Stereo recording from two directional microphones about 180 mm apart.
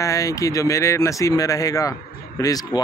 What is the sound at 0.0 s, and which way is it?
Speech, 15° left (ahead or behind).